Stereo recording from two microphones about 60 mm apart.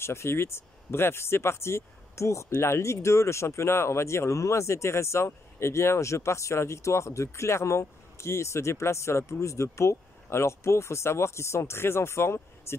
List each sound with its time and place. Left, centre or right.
0.0 s speech: left